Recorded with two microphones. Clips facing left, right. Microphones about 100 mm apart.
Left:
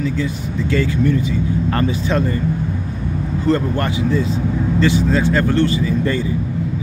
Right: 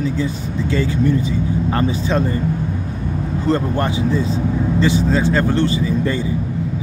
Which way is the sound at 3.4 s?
25° right (ahead or behind).